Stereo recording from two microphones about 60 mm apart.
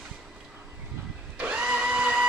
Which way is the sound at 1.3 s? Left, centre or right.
Right.